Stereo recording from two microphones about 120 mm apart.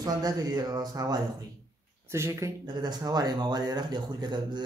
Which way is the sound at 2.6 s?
35° right (ahead or behind).